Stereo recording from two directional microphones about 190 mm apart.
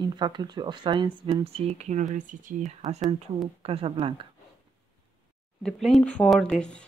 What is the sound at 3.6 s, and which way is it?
Speech, 30° right (ahead or behind).